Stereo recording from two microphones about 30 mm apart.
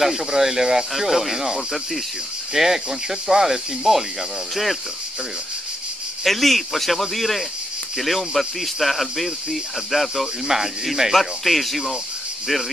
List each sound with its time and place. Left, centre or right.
0.0 s speech: centre
0.9 s speech: centre
6.2 s speech: centre
10.4 s speech: centre
11.1 s speech: centre